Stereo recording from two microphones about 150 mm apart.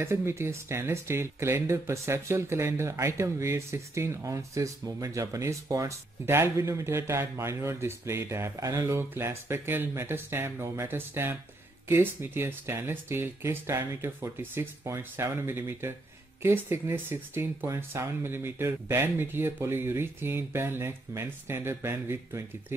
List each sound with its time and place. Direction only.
0.0 s speech: 15° right (ahead or behind)